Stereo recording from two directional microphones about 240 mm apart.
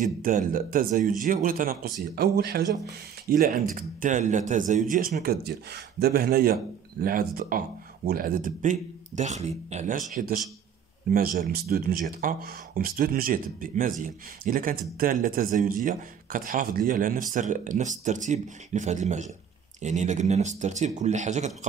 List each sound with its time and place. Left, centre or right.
0.0 s speech: right